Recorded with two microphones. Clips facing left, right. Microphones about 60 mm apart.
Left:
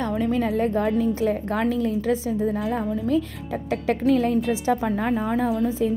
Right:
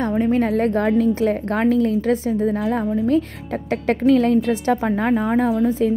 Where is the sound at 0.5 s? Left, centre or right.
Right.